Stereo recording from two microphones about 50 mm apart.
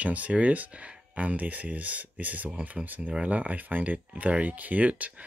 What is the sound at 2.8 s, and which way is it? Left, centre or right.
Speech, right.